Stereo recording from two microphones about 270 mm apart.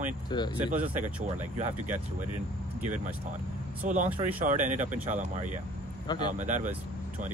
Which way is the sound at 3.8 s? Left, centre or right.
Right.